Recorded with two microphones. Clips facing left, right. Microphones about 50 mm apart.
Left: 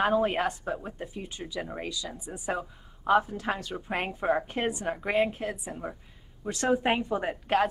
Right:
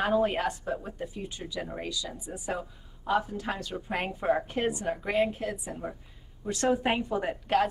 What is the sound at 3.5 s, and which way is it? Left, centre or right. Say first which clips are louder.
Speech: left 2 dB; left.